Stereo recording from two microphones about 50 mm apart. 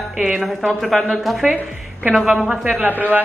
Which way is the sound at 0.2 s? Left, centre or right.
Centre.